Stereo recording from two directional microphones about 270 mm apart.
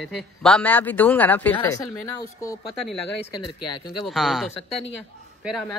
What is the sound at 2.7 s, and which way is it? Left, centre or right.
Speech, centre.